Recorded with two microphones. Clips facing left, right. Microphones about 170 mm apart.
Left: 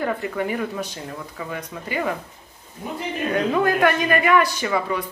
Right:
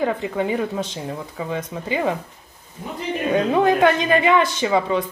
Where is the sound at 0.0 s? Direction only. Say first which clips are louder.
Right 3 dB; 20° right (ahead or behind).